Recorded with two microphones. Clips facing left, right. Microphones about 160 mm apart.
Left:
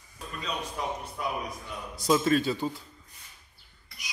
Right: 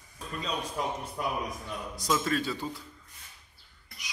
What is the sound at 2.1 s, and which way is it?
Speech, 25° left (ahead or behind).